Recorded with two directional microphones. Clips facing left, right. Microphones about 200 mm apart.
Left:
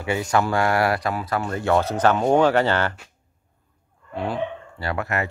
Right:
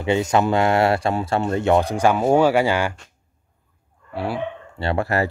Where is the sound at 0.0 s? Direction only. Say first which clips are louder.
Right 3 dB; 20° right (ahead or behind).